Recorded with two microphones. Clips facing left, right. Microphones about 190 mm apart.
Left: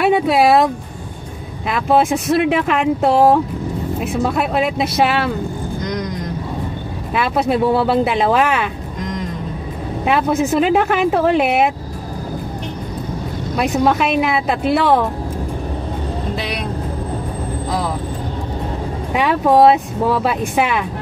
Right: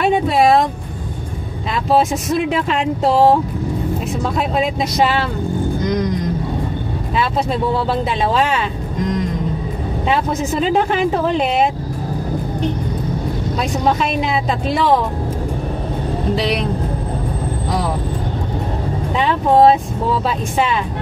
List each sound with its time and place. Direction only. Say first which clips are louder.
0.0 s speech: left 1 dB; 5° left (ahead or behind)
1.7 s speech: left 1 dB; centre (ahead or behind)
4.4 s speech: right 2 dB; 5° left (ahead or behind)
7.4 s speech: left 3 dB; 5° left (ahead or behind)
8.3 s speech: left 2 dB; 55° left (ahead or behind)
10.3 s speech: left 2 dB; 5° left (ahead or behind)
14.3 s speech: left 2 dB; 5° left (ahead or behind)
19.1 s speech: left 1 dB; 10° left (ahead or behind)